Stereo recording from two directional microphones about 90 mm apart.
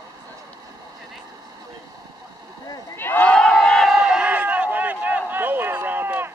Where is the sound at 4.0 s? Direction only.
10° right (ahead or behind); by 6.3 s 25° right (ahead or behind).